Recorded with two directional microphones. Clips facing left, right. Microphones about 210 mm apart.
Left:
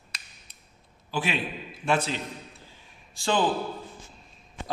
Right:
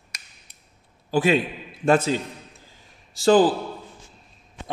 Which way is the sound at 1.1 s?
45° right (ahead or behind).